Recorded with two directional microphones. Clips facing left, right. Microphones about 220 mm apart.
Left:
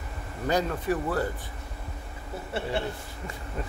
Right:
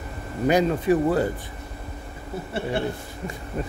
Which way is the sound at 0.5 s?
15° right (ahead or behind).